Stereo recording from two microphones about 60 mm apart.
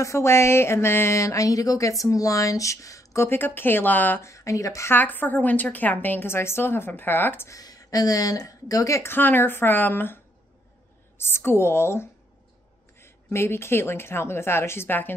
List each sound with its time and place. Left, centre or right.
0.0 s speech: left
3.2 s a woman's voice: left
4.2 s speech: left
4.8 s a woman's voice: left
7.4 s speech: left
9.0 s a woman's voice: left